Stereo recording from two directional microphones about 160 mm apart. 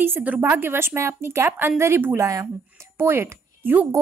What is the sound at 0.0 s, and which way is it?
Speech, 10° right (ahead or behind).